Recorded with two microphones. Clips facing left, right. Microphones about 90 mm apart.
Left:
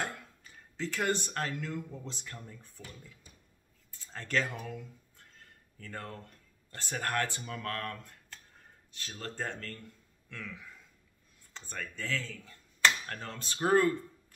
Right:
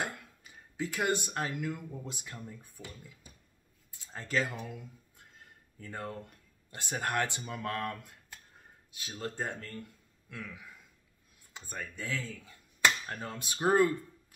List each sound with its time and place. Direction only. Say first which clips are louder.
0.0 s speech: even; 15° right (ahead or behind)
4.0 s speech: even; 10° right (ahead or behind)
5.1 s a sound: right 1 dB; 15° right (ahead or behind)
6.7 s speech: right 1 dB; 15° right (ahead or behind)